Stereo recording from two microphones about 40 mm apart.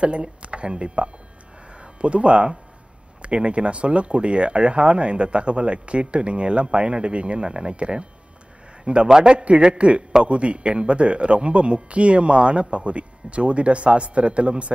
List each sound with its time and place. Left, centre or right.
0.0 s speech: right
1.7 s a sound: right
3.2 s speech: right
9.0 s a man's voice: centre